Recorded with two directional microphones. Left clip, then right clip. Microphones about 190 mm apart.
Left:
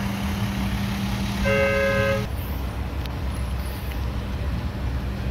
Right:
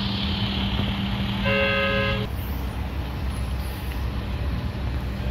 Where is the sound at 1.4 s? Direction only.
20° left (ahead or behind).